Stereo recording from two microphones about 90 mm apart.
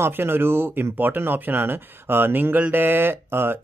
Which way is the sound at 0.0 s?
25° right (ahead or behind).